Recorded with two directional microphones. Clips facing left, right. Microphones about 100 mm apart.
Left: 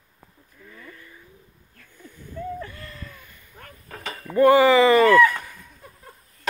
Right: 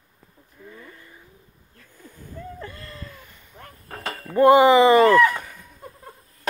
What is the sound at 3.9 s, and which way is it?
Cutlery, 45° right (ahead or behind).